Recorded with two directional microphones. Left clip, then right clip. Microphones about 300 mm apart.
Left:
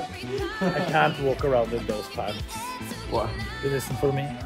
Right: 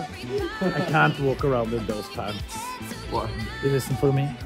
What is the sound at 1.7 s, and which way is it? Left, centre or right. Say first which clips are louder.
A man's voice: even; centre.